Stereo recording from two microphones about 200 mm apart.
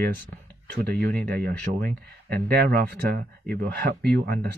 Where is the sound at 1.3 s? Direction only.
50° right (ahead or behind).